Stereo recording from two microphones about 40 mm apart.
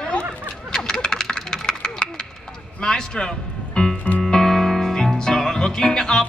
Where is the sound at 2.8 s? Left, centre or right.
Centre.